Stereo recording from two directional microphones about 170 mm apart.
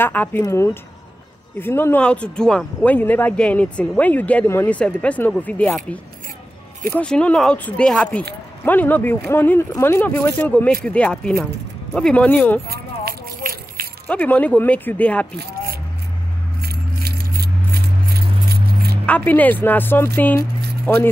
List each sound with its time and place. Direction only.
0.0 s speech: 10° left (ahead or behind)
6.9 s speech: 5° left (ahead or behind)
12.6 s a sound: 65° right (ahead or behind)
14.0 s speech: 10° left (ahead or behind)
15.3 s a sound: 65° right (ahead or behind)
16.6 s keys jangling: 65° right (ahead or behind)
19.0 s speech: 10° left (ahead or behind)